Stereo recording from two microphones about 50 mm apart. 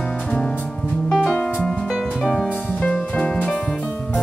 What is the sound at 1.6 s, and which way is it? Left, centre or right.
Music, left.